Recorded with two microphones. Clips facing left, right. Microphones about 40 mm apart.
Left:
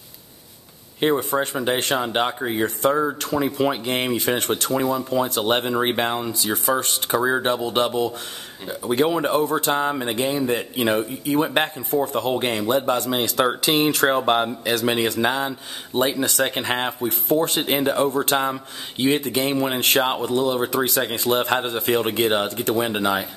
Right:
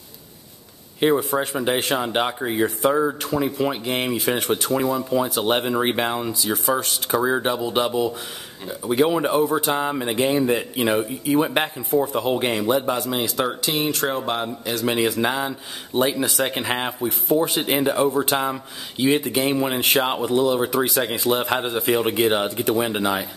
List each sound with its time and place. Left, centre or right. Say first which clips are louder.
1.0 s speech: right 1 dB; centre
3.3 s speech: left 3 dB; centre
10.2 s speech: right 4 dB; centre
10.5 s speech: right 1 dB; centre
13.4 s speech: left 6 dB; centre
14.7 s speech: right 1 dB; centre
17.3 s speech: even; centre
17.6 s speech: even; centre